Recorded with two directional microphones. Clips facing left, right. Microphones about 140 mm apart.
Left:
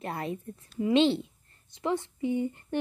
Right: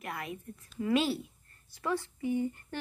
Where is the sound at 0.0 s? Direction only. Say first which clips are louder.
Left 6 dB; 30° left (ahead or behind).